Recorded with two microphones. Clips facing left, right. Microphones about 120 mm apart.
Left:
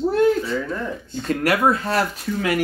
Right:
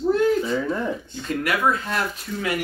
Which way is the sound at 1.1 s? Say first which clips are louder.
Left 4 dB; 35° left (ahead or behind).